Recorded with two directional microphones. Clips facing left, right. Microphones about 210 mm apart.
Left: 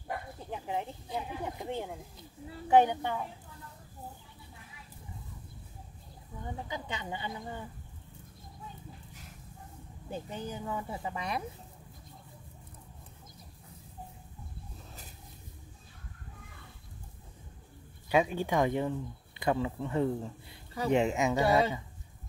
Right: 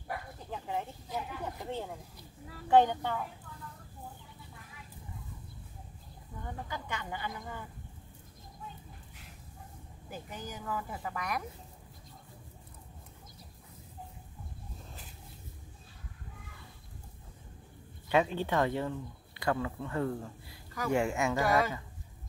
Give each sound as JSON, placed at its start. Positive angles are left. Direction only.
{"t": 0.4, "sound": "a sound", "side_deg": 15}
{"t": 2.7, "sound": "speech", "side_deg": 15}
{"t": 6.4, "sound": "speech", "side_deg": 20}
{"t": 10.0, "sound": "speech", "side_deg": 30}
{"t": 18.0, "sound": "speech", "side_deg": 10}